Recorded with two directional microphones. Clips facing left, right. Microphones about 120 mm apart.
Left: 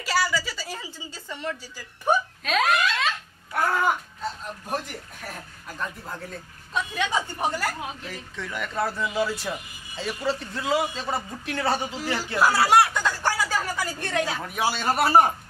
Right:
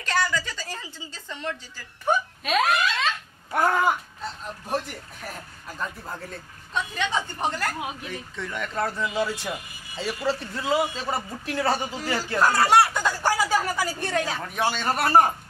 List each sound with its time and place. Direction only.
0.0 s speech: 5° left (ahead or behind)
2.4 s speech: centre (ahead or behind)
5.2 s speech: centre (ahead or behind)
6.7 s a man's voice: 10° left (ahead or behind)